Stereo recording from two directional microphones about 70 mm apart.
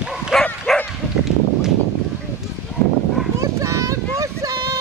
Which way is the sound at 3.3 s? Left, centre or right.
Right.